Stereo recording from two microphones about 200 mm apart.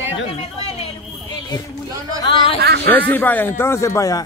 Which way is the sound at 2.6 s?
55° right (ahead or behind).